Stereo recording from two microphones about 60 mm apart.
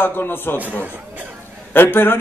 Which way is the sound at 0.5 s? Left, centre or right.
Right.